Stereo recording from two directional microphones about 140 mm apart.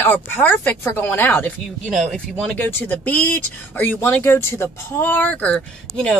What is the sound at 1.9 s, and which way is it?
Speech, centre (ahead or behind).